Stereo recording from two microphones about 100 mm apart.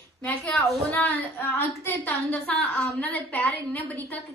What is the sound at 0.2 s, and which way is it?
Speech, 10° left (ahead or behind).